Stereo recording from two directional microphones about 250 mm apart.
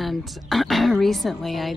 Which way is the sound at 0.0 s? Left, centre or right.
Centre.